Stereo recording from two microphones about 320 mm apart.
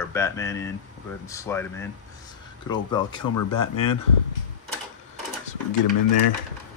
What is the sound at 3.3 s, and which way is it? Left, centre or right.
Speech, left.